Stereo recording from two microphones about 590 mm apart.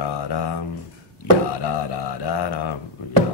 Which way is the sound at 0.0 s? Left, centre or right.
Left.